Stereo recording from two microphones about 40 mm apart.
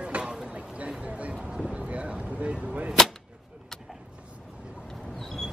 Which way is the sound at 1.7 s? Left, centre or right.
Right.